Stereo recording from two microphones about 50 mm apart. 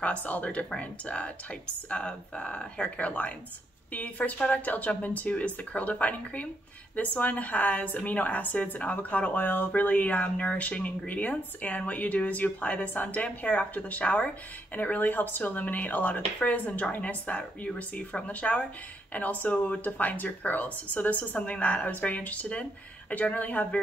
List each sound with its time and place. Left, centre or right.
0.0 s speech: left